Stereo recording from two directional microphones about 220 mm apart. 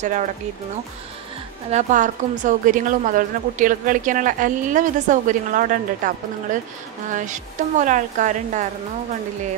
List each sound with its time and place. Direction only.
1.7 s a woman's voice: 35° right (ahead or behind)